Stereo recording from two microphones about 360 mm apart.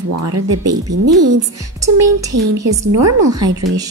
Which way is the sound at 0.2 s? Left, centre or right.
Right.